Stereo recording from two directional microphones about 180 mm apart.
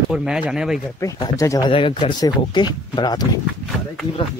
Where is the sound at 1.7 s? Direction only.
30° left (ahead or behind).